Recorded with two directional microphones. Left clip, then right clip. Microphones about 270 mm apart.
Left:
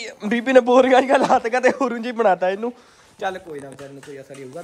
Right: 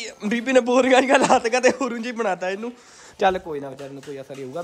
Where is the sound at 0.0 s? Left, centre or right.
Centre.